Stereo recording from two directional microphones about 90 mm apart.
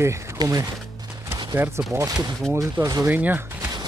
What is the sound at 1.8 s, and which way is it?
Speech, 25° right (ahead or behind).